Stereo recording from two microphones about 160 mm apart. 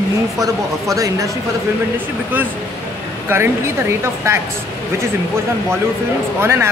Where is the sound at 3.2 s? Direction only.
15° right (ahead or behind).